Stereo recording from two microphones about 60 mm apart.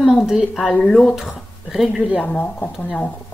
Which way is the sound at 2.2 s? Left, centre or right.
Centre.